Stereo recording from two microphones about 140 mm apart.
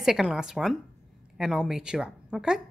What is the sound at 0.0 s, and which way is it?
Speech, 5° right (ahead or behind).